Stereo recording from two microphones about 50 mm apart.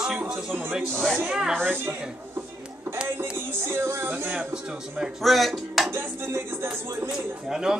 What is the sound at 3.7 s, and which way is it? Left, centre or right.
Speech, right.